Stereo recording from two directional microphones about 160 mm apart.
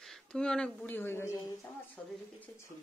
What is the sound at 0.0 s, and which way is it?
Speech, 5° left (ahead or behind).